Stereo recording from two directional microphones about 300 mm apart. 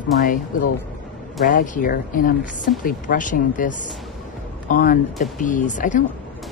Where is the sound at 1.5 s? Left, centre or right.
Left.